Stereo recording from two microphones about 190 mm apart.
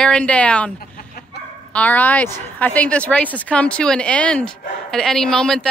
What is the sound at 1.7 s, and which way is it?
Speech, 10° left (ahead or behind).